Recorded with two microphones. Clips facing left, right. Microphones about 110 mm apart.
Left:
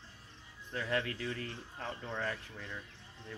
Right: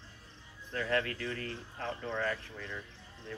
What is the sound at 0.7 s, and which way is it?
Speech, 15° left (ahead or behind).